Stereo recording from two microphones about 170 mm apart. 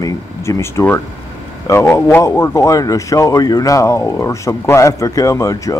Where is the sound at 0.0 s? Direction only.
15° left (ahead or behind).